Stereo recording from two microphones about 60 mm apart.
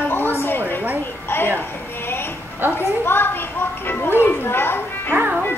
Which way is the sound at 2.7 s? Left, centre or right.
Left.